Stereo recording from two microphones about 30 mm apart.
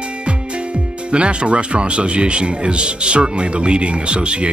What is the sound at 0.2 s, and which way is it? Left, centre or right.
Music, right.